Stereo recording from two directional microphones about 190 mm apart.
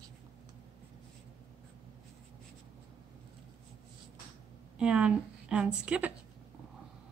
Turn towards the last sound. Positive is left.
turn(degrees=-5)  # may be behind; listen again after turning